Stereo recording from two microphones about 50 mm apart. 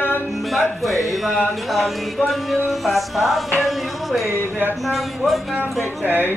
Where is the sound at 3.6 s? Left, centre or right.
Centre.